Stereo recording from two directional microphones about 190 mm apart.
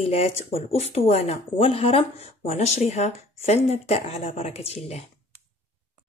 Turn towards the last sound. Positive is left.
turn(degrees=35)  # may be behind; listen again after turning